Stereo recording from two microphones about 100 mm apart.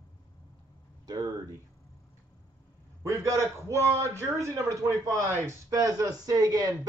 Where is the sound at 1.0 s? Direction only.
40° right (ahead or behind).